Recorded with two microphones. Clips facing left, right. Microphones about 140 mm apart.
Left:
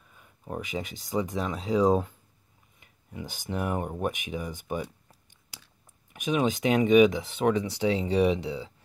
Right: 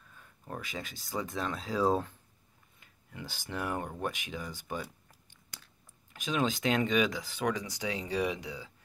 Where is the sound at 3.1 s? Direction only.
15° left (ahead or behind).